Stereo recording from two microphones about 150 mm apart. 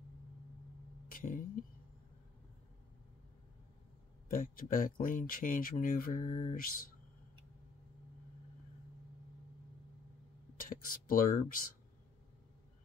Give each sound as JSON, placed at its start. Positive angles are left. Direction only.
{"t": 1.0, "sound": "a sound", "side_deg": 65}
{"t": 4.3, "sound": "speech", "side_deg": 70}
{"t": 10.6, "sound": "speech", "side_deg": 70}